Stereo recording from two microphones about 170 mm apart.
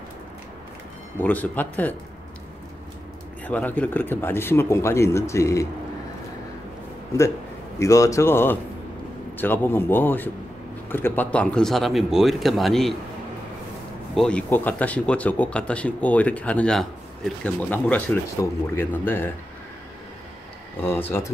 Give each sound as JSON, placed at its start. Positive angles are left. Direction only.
{"t": 1.1, "sound": "speech", "side_deg": 10}
{"t": 3.4, "sound": "speech", "side_deg": 10}
{"t": 7.8, "sound": "speech", "side_deg": 20}
{"t": 14.1, "sound": "speech", "side_deg": 5}
{"t": 20.8, "sound": "speech", "side_deg": 15}